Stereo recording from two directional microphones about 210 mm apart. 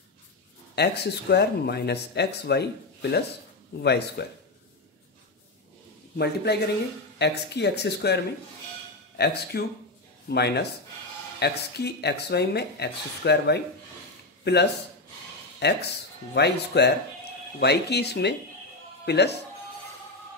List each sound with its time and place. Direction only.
0.7 s speech: 50° left (ahead or behind)
6.1 s speech: 50° left (ahead or behind)